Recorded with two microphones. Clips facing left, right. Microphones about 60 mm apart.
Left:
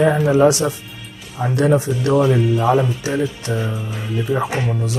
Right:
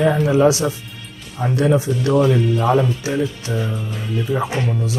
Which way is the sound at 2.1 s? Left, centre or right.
Centre.